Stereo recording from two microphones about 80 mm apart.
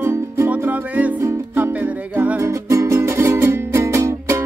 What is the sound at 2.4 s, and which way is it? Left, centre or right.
Music, right.